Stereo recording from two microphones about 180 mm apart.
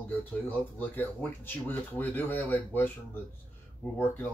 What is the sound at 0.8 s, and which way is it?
Speech, 10° left (ahead or behind).